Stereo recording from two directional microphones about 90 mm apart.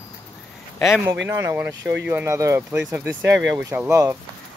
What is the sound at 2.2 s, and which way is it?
Speech, 35° right (ahead or behind).